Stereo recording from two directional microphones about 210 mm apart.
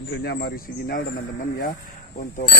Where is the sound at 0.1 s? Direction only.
55° left (ahead or behind).